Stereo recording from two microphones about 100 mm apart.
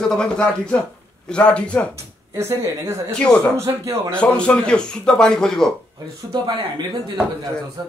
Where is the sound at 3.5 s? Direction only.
30° right (ahead or behind).